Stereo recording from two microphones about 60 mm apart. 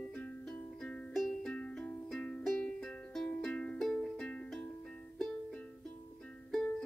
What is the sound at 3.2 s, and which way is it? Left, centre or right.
Music, left.